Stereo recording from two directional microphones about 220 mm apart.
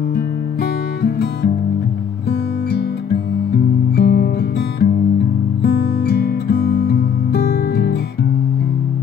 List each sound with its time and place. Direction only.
3.9 s guitar: 50° left (ahead or behind)
5.6 s music: 45° left (ahead or behind)